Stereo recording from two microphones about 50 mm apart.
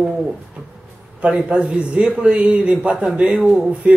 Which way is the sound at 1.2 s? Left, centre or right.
Right.